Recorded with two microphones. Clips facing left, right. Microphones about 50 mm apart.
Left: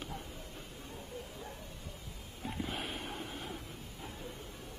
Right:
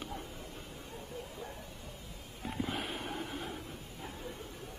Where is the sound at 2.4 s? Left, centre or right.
Centre.